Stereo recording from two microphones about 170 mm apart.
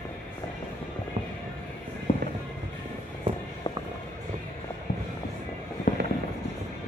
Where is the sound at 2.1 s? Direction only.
40° left (ahead or behind).